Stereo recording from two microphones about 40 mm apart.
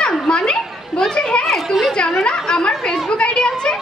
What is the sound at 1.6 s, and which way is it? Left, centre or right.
Speech, centre.